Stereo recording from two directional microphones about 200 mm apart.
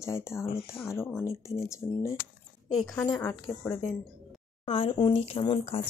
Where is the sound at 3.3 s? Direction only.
10° left (ahead or behind).